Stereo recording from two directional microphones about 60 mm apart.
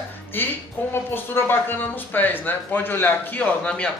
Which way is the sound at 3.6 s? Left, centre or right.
Centre.